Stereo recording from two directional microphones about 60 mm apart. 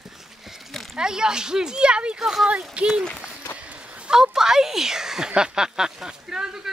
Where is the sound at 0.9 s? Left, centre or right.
Centre.